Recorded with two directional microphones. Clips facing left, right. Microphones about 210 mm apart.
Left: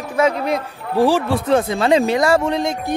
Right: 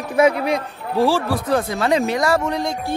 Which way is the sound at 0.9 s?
15° left (ahead or behind).